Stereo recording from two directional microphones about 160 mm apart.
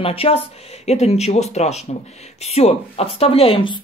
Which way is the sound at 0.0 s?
35° left (ahead or behind).